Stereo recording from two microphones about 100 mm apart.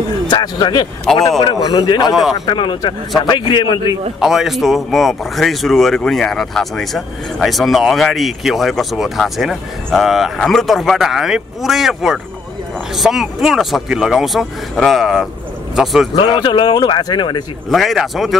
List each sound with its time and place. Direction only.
0.3 s speech: 50° left (ahead or behind)
1.1 s speech: 5° left (ahead or behind)
1.4 s speech: 45° left (ahead or behind)
2.4 s speech: 55° left (ahead or behind)
4.2 s a man's voice: 5° right (ahead or behind)
16.3 s speech: 50° left (ahead or behind)
17.6 s speech: centre (ahead or behind)